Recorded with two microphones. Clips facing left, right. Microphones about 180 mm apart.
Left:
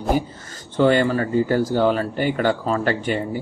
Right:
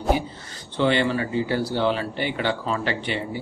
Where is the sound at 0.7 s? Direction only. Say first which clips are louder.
Left 4 dB; 45° left (ahead or behind).